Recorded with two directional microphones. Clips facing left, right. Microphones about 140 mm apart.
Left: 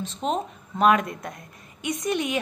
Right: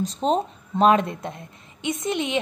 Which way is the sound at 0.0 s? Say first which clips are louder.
Right 5 dB; 35° right (ahead or behind).